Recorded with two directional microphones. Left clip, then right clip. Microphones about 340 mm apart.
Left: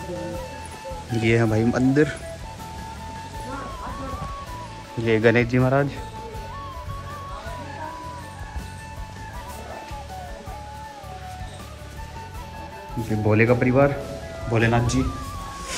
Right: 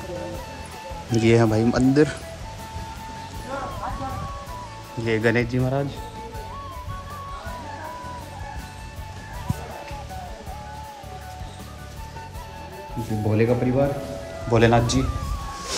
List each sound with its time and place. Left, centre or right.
1.1 s speech: centre
5.0 s speech: centre
13.0 s speech: centre
14.5 s speech: centre